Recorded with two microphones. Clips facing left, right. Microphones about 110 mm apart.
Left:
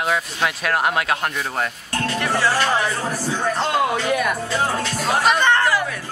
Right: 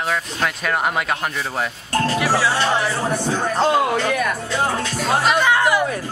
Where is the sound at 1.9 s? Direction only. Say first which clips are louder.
Right 4 dB; 35° right (ahead or behind).